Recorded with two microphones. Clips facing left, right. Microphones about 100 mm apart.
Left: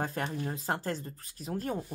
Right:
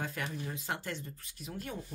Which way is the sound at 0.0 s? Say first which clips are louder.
Left 5 dB; 40° left (ahead or behind).